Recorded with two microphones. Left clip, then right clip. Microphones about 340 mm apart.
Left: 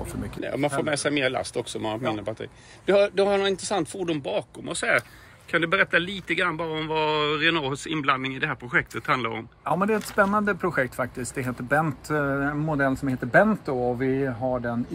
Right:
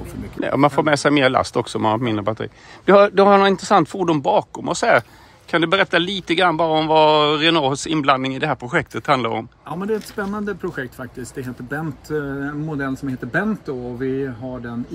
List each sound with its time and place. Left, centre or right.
0.4 s a man's voice: right
9.7 s speech: centre